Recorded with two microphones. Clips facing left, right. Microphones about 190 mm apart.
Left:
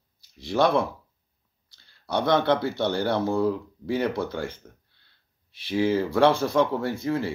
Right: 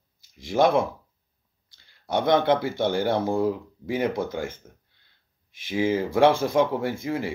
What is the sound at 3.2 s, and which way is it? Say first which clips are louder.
Speech: even; 15° right (ahead or behind).